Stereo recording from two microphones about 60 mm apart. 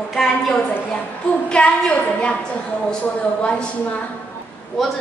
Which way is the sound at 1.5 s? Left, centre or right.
Left.